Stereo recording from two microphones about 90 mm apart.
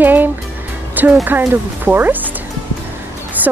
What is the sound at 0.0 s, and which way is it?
Music, 20° right (ahead or behind).